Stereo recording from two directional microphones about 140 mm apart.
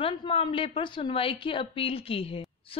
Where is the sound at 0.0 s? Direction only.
40° left (ahead or behind).